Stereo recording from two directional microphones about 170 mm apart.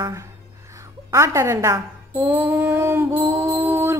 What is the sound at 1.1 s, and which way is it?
A woman's voice, 15° right (ahead or behind).